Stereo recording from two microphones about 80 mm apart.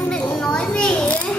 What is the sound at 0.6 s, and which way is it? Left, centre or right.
Children playing, centre.